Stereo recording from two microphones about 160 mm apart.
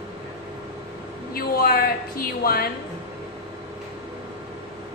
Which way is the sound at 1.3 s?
65° left (ahead or behind).